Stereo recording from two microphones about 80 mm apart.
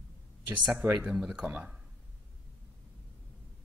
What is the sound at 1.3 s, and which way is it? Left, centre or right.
Speech, centre.